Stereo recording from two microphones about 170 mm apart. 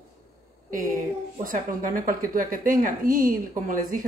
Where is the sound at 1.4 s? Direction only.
55° right (ahead or behind).